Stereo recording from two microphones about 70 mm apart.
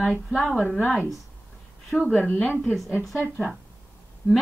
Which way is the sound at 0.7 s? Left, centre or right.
Left.